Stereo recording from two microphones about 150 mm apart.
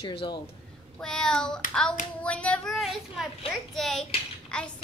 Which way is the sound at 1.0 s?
5° left (ahead or behind).